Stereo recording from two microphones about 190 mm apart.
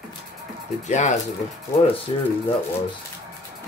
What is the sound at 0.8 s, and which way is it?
Speech, 40° left (ahead or behind).